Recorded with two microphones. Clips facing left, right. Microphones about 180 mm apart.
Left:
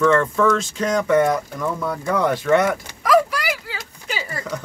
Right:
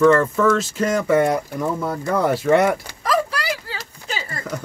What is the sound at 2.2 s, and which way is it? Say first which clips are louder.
Speech: right 2 dB; 5° right (ahead or behind).